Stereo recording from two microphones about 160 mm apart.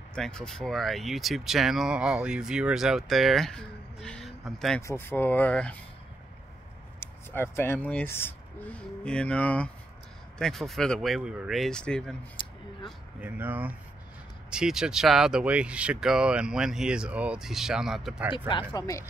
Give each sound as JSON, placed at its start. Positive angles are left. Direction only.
{"t": 0.1, "sound": "speech", "side_deg": 5}
{"t": 4.8, "sound": "speech", "side_deg": 15}
{"t": 7.0, "sound": "speech", "side_deg": 15}
{"t": 12.4, "sound": "a sound", "side_deg": 30}
{"t": 13.2, "sound": "speech", "side_deg": -10}
{"t": 18.5, "sound": "speech", "side_deg": 30}